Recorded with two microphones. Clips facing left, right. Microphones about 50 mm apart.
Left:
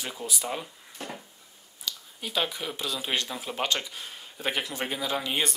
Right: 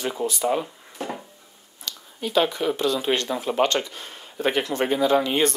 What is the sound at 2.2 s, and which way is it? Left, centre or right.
Speech, centre.